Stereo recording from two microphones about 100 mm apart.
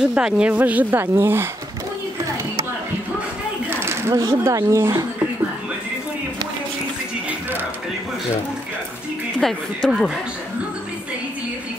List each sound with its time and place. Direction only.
0.0 s speech: 10° right (ahead or behind)
3.7 s a sound: 25° right (ahead or behind)
4.1 s speech: 35° right (ahead or behind)
9.4 s speech: 5° left (ahead or behind)